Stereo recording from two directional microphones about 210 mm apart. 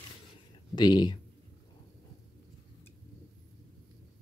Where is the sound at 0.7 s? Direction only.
20° left (ahead or behind).